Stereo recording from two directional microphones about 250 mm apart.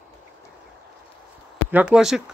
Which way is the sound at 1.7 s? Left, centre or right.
Centre.